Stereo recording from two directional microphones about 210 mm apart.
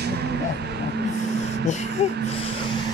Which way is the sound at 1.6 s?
35° left (ahead or behind).